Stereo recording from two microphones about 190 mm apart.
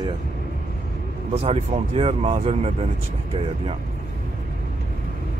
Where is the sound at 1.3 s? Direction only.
30° right (ahead or behind).